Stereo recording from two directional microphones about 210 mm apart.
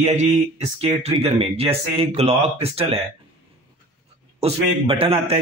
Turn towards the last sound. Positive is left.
turn(degrees=-30)  # may be behind; listen again after turning